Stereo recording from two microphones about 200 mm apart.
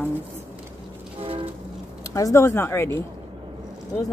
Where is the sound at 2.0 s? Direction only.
15° left (ahead or behind).